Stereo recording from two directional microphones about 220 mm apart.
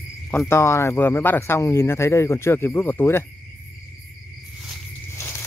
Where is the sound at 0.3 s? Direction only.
10° left (ahead or behind).